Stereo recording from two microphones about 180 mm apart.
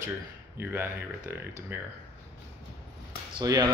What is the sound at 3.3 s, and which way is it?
Speech, 20° right (ahead or behind).